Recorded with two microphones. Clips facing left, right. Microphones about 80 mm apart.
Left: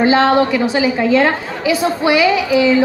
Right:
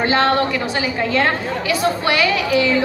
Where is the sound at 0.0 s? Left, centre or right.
Centre.